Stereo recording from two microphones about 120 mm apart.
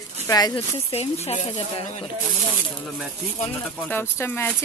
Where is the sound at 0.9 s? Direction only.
60° left (ahead or behind).